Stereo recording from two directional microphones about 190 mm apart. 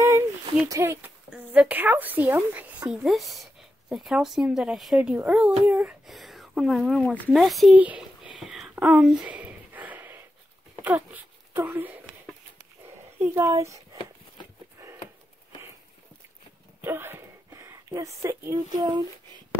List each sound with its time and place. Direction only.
0.0 s a child's voice: 15° right (ahead or behind)
16.8 s a sound: 10° right (ahead or behind)
18.8 s speech: 20° right (ahead or behind)